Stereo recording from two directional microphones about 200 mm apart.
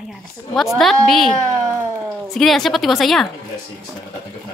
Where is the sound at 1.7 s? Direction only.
10° right (ahead or behind).